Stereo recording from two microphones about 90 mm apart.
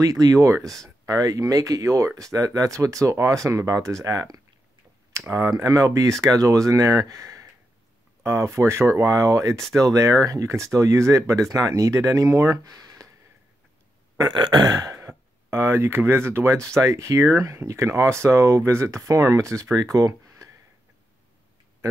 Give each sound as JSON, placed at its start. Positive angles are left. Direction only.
{"t": 0.0, "sound": "speech", "side_deg": -40}
{"t": 0.7, "sound": "speech", "side_deg": 5}
{"t": 1.0, "sound": "speech", "side_deg": -40}
{"t": 12.7, "sound": "a sound", "side_deg": -40}
{"t": 14.2, "sound": "burping", "side_deg": -60}
{"t": 14.9, "sound": "speech", "side_deg": -30}